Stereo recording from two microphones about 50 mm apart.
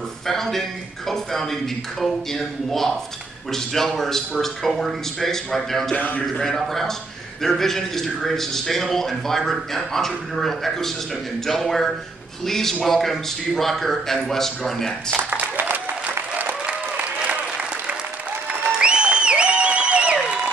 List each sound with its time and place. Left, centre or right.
0.3 s a man's voice: centre
5.9 s a man's voice: left
6.3 s a man's voice: centre
15.2 s applause: right
16.6 s applause: right
18.7 s applause: centre